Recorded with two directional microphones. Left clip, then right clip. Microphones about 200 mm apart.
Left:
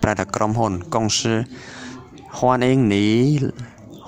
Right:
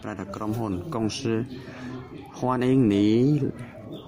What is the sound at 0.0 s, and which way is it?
Speech, 35° left (ahead or behind).